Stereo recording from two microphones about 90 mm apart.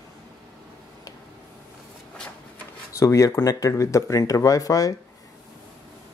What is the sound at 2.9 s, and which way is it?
Speech, 35° left (ahead or behind).